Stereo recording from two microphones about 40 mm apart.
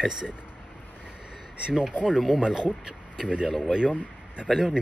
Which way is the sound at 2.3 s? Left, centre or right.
Centre.